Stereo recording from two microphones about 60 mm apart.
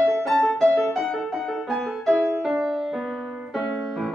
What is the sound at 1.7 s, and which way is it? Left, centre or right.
Music, centre.